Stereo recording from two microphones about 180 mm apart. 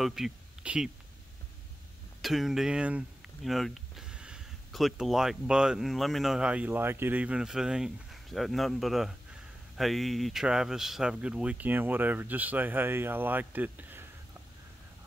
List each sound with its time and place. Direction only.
0.0 s speech: centre (ahead or behind)
2.2 s speech: centre (ahead or behind)